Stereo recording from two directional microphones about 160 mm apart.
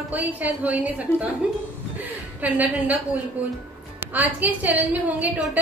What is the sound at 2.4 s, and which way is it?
Speech, 10° right (ahead or behind).